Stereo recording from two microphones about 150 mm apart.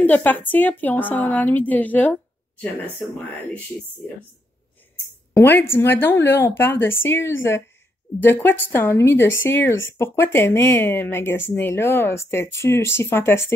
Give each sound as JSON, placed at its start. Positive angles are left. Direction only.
{"t": 0.0, "sound": "speech", "side_deg": 10}
{"t": 5.3, "sound": "speech", "side_deg": 15}